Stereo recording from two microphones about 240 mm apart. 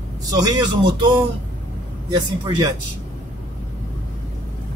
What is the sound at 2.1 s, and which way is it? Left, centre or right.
Speech, centre.